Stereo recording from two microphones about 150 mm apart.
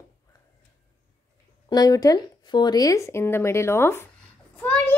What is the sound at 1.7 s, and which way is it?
Speech, 25° left (ahead or behind).